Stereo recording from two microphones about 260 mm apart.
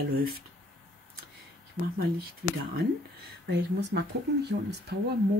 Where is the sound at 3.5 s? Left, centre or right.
Right.